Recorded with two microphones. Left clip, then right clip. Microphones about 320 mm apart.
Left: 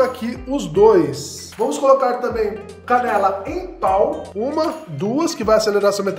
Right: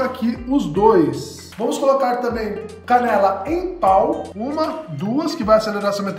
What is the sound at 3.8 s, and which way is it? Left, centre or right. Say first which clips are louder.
Speech: right 1 dB; centre.